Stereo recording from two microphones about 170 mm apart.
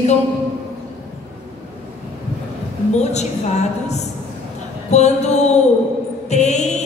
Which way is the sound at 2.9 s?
40° left (ahead or behind).